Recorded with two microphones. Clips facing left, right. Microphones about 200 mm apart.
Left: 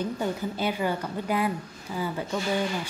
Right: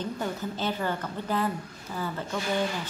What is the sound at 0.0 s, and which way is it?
A woman's voice, 10° left (ahead or behind).